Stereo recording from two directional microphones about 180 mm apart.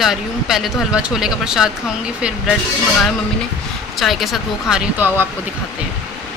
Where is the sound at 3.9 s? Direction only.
Centre (ahead or behind).